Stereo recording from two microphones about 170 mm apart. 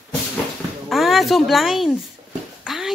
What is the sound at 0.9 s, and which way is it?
Speech, centre (ahead or behind).